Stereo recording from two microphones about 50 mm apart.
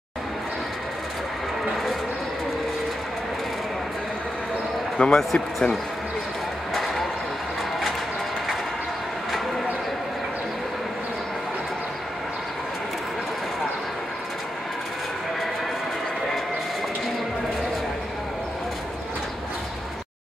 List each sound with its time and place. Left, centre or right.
4.9 s speech: centre
5.3 s speech: centre
6.7 s a sound: centre